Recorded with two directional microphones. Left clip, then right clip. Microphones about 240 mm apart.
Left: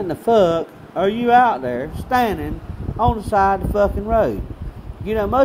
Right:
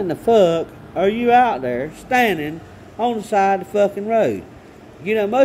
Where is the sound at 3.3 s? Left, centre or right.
Left.